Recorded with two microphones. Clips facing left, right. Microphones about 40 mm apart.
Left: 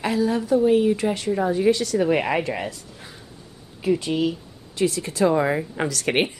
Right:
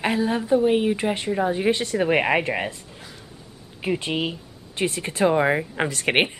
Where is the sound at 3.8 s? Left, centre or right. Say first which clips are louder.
Left 3 dB; right.